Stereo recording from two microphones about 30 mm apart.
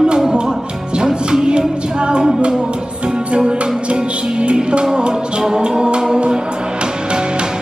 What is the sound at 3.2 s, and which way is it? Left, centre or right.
Music, right.